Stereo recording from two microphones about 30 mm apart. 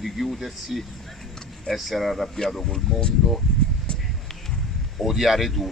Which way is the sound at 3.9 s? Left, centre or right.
Left.